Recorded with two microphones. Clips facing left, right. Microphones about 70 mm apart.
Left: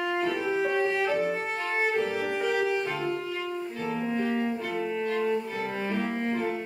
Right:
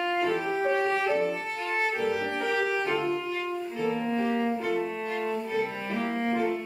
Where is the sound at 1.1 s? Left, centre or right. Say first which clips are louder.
Even; left.